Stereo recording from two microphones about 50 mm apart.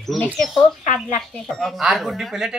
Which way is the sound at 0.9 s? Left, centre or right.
Left.